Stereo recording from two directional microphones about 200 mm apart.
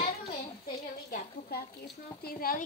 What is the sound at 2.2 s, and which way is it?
Speech, 45° left (ahead or behind).